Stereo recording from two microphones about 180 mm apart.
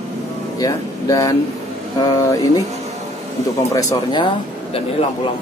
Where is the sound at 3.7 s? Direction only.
20° left (ahead or behind).